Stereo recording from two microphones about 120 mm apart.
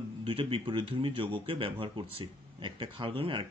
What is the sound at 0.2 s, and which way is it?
Speech, 50° right (ahead or behind).